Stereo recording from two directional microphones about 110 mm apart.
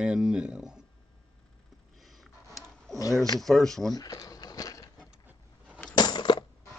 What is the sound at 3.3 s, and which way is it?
Speech, centre (ahead or behind).